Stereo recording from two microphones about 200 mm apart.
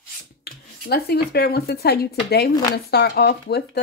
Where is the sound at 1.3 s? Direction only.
50° left (ahead or behind).